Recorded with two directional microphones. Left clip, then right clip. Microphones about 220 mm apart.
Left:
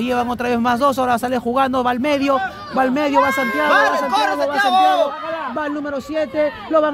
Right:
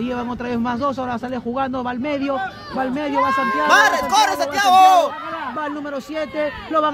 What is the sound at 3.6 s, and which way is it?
Speech, 50° right (ahead or behind).